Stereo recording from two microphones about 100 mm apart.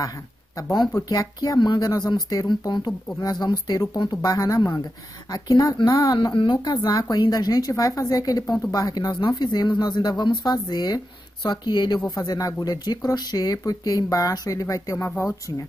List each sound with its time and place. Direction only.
0.0 s speech: 35° left (ahead or behind)